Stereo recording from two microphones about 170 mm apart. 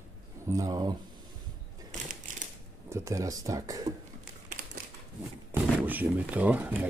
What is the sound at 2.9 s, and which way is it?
Speech, 20° right (ahead or behind).